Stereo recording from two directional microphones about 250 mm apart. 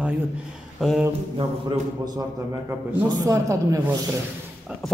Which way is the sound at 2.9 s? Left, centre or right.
Centre.